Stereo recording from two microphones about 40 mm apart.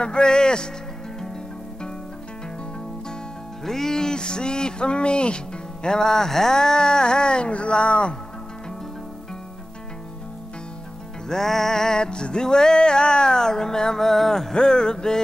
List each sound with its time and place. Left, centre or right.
0.0 s music: left
3.6 s music: centre; by 8.2 s left
11.2 s music: centre